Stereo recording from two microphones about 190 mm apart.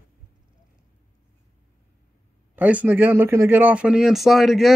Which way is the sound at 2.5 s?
10° right (ahead or behind).